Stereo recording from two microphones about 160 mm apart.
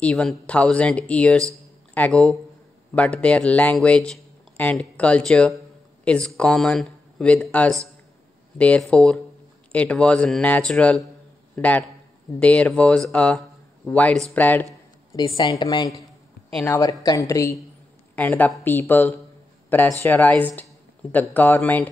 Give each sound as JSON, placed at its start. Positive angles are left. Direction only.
{"t": 0.0, "sound": "a man's voice", "side_deg": 0}
{"t": 15.1, "sound": "a woman's voice", "side_deg": 25}